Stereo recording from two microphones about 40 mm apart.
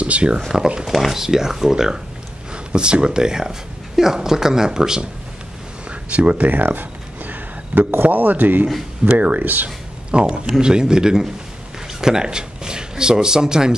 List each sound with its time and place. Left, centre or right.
0.0 s speech: right
0.5 s speech: centre
2.5 s speech: right
5.9 s a sound: right
6.5 s a sound: right
7.9 s speech: right
9.0 s speech: right
10.1 s speech: right